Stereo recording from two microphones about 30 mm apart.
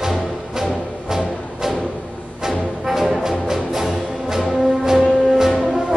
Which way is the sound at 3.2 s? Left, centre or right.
Centre.